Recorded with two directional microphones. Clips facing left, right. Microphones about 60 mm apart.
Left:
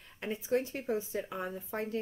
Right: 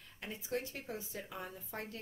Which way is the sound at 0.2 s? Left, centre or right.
Left.